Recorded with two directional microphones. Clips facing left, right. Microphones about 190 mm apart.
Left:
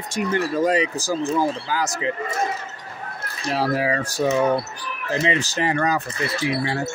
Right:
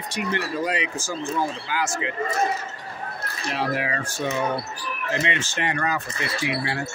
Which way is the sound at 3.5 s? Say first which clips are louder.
Left 5 dB; 35° left (ahead or behind).